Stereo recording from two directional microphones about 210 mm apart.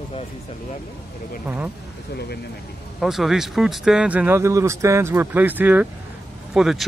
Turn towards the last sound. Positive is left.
turn(degrees=0)  # may be behind; listen again after turning